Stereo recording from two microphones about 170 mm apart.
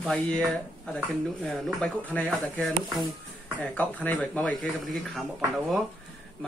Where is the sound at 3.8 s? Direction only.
10° left (ahead or behind).